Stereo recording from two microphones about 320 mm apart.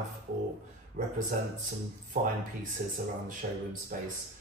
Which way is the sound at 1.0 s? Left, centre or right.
Right.